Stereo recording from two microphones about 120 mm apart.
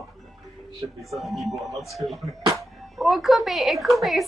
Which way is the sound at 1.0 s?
Centre (ahead or behind).